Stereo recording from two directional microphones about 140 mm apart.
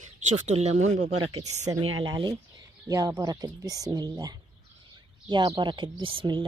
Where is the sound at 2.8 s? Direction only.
25° right (ahead or behind).